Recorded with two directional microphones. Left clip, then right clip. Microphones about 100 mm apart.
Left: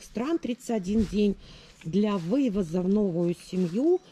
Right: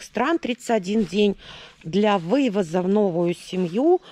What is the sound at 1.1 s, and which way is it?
Speech, 25° left (ahead or behind).